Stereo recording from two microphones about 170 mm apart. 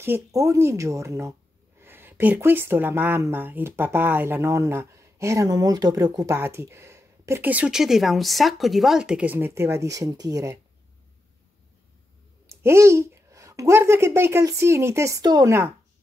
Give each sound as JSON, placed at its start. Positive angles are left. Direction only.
{"t": 0.0, "sound": "speech", "side_deg": -15}
{"t": 12.4, "sound": "speech", "side_deg": -15}